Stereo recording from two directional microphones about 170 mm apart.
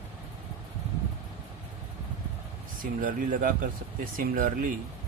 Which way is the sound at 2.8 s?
55° right (ahead or behind).